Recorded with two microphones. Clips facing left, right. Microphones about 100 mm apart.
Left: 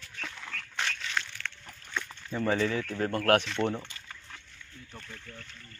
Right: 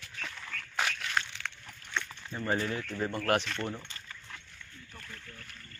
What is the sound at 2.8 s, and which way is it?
Speech, 60° left (ahead or behind).